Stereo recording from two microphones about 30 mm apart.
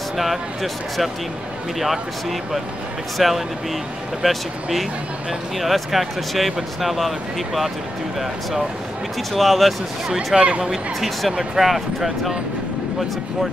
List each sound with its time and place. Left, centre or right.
0.2 s speech: centre
9.3 s speech: centre
10.1 s speech: right
11.5 s speech: centre